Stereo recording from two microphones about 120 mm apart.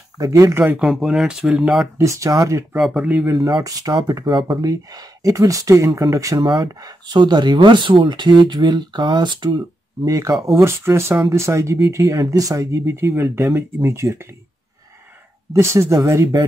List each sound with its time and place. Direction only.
0.2 s speech: 30° right (ahead or behind)
0.6 s speech: 15° right (ahead or behind)
0.8 s speech: 5° right (ahead or behind)
2.0 s speech: 25° right (ahead or behind)
2.7 s speech: 5° right (ahead or behind)
3.3 s speech: 35° right (ahead or behind)
10.0 s speech: 30° right (ahead or behind)
15.5 s speech: 25° right (ahead or behind)